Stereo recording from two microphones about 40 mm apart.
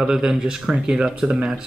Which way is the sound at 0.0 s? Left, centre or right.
Centre.